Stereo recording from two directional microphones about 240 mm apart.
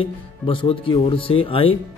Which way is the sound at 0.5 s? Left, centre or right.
Left.